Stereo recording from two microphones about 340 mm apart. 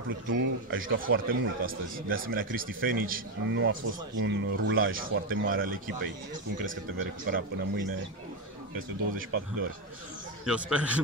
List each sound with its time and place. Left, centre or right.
0.3 s a man's voice: right
10.4 s a man's voice: centre